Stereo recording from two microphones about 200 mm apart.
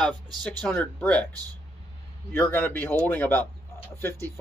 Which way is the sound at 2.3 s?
10° left (ahead or behind).